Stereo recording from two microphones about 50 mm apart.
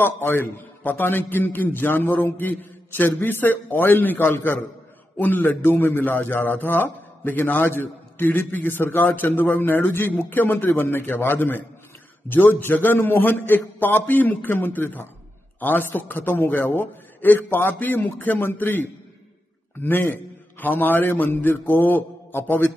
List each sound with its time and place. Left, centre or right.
0.0 s a man's voice: left
5.1 s a man's voice: left